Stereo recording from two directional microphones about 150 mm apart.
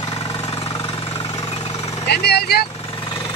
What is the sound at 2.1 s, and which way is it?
Speech, 90° left.